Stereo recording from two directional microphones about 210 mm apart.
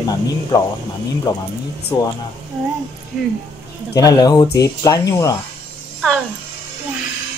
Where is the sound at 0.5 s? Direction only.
20° left (ahead or behind).